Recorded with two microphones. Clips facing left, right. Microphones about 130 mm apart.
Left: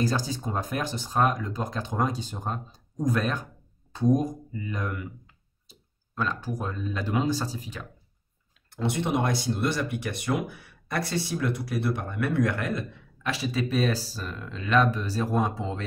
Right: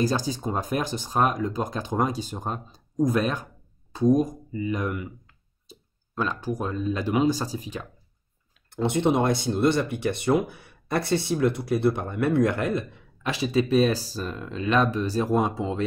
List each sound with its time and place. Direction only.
0.1 s speech: 20° right (ahead or behind)
4.6 s speech: 15° right (ahead or behind)
6.1 s speech: 15° right (ahead or behind)